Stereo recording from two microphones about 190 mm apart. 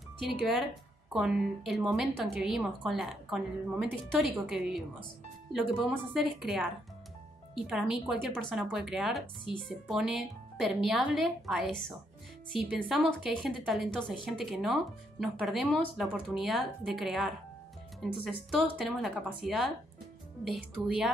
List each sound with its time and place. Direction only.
0.2 s speech: centre (ahead or behind)
18.5 s speech: centre (ahead or behind)